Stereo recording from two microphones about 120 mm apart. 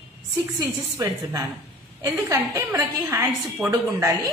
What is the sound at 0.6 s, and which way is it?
A man's voice, 30° right (ahead or behind).